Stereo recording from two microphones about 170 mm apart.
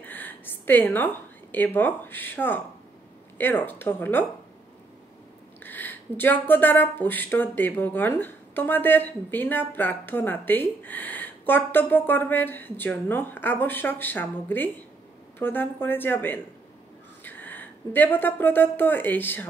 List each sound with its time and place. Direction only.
0.0 s a woman's voice: 10° left (ahead or behind)
5.6 s speech: 10° left (ahead or behind)